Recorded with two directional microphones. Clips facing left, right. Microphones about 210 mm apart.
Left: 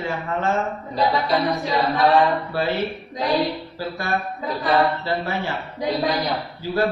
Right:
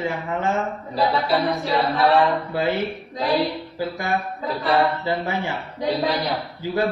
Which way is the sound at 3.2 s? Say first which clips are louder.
Even; centre (ahead or behind).